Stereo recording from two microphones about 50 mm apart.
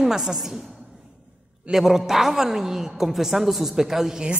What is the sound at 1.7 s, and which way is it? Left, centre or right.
A man's voice, centre.